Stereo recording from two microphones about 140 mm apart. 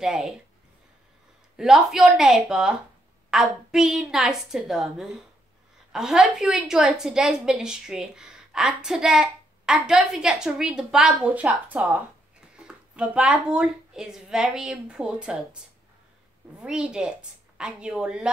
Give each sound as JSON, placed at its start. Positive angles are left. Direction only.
{"t": 0.0, "sound": "a woman's voice", "side_deg": -5}
{"t": 1.6, "sound": "a woman's voice", "side_deg": 0}
{"t": 16.5, "sound": "a woman's voice", "side_deg": -5}